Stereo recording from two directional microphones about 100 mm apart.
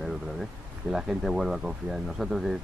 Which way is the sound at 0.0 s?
Centre (ahead or behind).